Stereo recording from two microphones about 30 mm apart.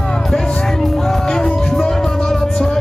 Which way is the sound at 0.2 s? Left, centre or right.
Centre.